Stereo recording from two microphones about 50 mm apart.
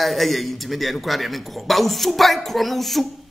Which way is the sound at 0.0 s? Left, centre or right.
Centre.